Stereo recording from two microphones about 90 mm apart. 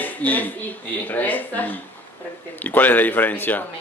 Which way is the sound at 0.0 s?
20° left (ahead or behind).